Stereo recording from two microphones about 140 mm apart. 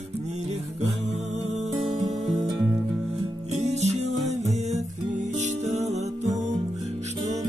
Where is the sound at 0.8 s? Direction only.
45° right (ahead or behind).